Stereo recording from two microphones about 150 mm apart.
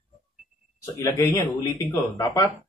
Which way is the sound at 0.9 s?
20° left (ahead or behind).